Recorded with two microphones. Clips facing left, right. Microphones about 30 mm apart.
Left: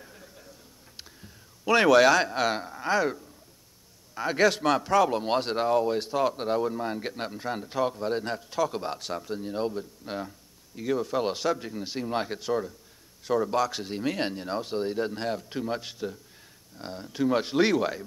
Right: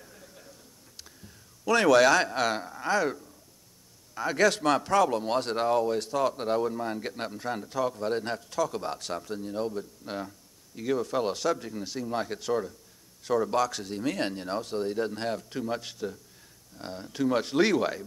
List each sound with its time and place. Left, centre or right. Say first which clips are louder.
0.0 s a sound: left 2 dB; centre
0.9 s speech: left 2 dB; centre
5.1 s speech: left 1 dB; left
5.6 s speech: left 1 dB; centre
5.9 s speech: left 1 dB; centre
7.9 s speech: even; centre
8.5 s speech: left 3 dB; centre
10.0 s speech: left 1 dB; centre
11.6 s speech: left 1 dB; left
12.3 s speech: even; centre
13.7 s speech: left 1 dB; left
14.3 s speech: left 1 dB; centre
14.6 s speech: left 1 dB; centre
15.1 s speech: left 1 dB; centre